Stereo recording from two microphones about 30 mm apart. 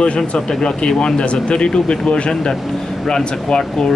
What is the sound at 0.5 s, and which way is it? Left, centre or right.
Speech, left.